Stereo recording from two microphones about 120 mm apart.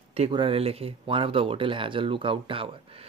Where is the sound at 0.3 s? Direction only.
45° right (ahead or behind).